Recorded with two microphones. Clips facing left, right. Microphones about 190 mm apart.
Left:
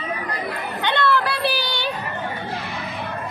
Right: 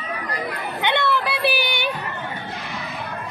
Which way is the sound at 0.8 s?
20° right (ahead or behind).